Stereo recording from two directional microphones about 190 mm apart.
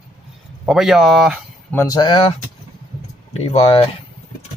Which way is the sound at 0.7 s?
Centre (ahead or behind).